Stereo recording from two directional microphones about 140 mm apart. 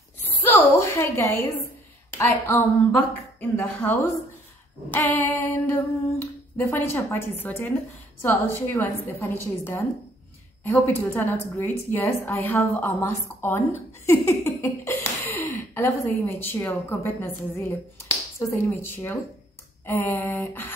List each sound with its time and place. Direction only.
0.5 s a sound: 15° left (ahead or behind)
2.1 s a woman's voice: 15° left (ahead or behind)
14.6 s a woman's voice: 20° left (ahead or behind)